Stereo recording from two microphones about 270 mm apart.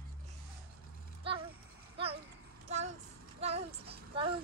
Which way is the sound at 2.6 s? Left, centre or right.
Right.